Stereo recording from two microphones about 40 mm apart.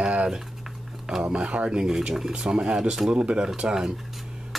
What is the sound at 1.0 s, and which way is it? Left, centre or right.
Speech, centre.